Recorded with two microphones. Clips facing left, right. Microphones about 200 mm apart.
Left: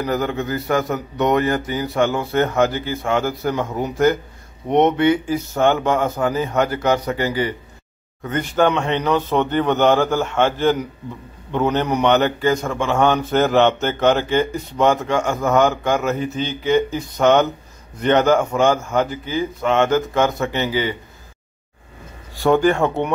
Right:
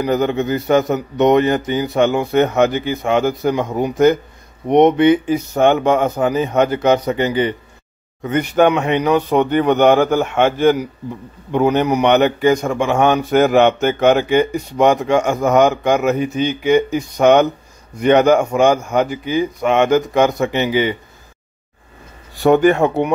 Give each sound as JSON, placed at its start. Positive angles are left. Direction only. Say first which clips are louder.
{"t": 0.0, "sound": "a man's voice", "louder": "right 5 dB", "side_deg": -20}
{"t": 22.4, "sound": "a man's voice", "louder": "right 4 dB", "side_deg": -20}